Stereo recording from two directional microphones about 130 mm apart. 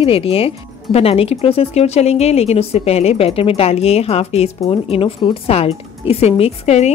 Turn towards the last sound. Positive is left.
turn(degrees=60)  # may be behind; listen again after turning